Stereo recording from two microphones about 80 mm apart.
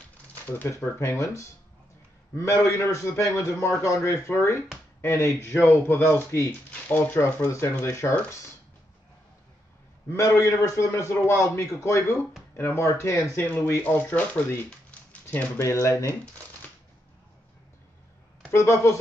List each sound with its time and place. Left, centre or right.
0.3 s shuffling cards: left
0.7 s a man's voice: left
10.0 s a man's voice: left
13.8 s a man's voice: centre
15.5 s a man's voice: left
18.5 s a man's voice: left